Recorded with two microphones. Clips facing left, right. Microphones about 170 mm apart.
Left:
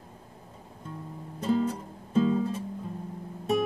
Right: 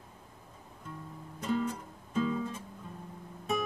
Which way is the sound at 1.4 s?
30° left (ahead or behind).